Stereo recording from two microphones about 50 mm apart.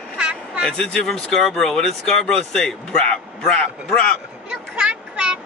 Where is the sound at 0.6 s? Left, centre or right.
Centre.